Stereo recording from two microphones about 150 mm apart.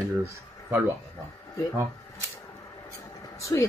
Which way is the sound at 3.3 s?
20° left (ahead or behind).